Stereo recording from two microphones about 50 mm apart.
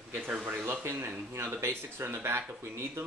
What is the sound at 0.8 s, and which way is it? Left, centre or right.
Speech, right.